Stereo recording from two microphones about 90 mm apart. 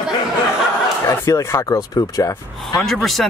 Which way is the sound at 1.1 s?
35° left (ahead or behind).